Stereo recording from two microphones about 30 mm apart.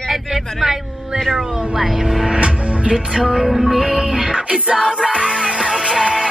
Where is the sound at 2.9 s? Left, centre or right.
Right.